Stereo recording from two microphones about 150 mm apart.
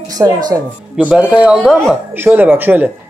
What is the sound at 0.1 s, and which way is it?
Speech, 25° right (ahead or behind).